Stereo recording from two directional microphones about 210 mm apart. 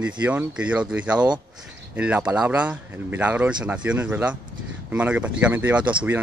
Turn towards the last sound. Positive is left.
turn(degrees=-5)  # may be behind; listen again after turning